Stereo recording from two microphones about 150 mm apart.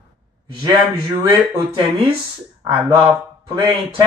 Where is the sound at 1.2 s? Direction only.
30° right (ahead or behind).